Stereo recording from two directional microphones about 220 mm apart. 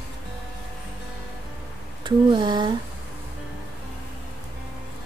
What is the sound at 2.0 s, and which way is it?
Speech, 20° right (ahead or behind).